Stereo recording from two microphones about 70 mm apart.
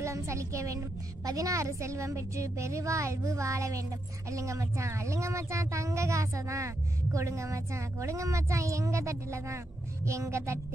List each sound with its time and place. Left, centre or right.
0.0 s speech: right